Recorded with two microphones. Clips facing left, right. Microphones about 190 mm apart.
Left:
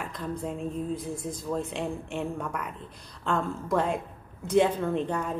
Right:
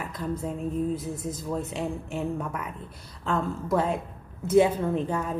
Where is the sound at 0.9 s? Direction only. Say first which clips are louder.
Right 1 dB; 5° right (ahead or behind).